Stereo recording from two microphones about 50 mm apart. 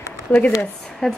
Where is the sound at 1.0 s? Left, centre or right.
Centre.